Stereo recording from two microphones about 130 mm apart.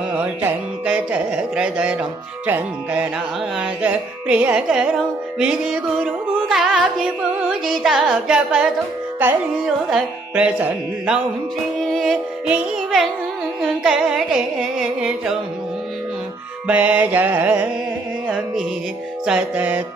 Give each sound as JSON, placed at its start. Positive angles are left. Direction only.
{"t": 0.1, "sound": "carnatic music", "side_deg": -15}
{"t": 6.5, "sound": "music", "side_deg": 0}
{"t": 9.8, "sound": "carnatic music", "side_deg": -5}
{"t": 11.8, "sound": "music", "side_deg": 0}
{"t": 13.6, "sound": "carnatic music", "side_deg": -5}
{"t": 16.6, "sound": "carnatic music", "side_deg": -10}
{"t": 19.2, "sound": "carnatic music", "side_deg": -10}